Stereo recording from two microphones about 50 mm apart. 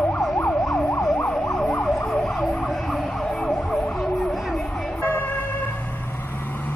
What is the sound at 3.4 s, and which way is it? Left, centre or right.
Emergency vehicle, centre.